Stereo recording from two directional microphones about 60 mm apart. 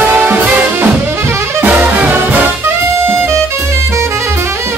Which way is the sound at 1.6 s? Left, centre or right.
Right.